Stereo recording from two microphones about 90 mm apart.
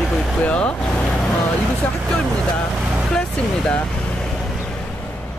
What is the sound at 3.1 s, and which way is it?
Speech, 10° left (ahead or behind).